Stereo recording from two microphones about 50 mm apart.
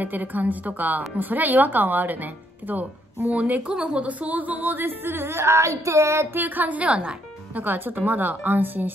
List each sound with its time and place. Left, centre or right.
0.0 s speech: right
3.6 s speech: centre
4.0 s music: right
6.3 s speech: right
7.5 s speech: right